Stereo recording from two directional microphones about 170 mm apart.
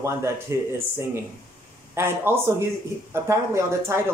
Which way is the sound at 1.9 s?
15° right (ahead or behind).